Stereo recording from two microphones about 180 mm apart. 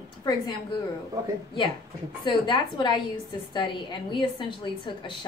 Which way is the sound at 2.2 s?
25° left (ahead or behind).